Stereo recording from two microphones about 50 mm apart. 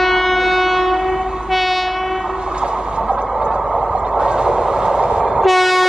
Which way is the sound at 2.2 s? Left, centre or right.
Centre.